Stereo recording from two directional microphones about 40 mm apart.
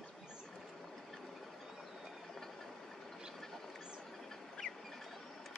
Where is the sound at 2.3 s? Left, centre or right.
Centre.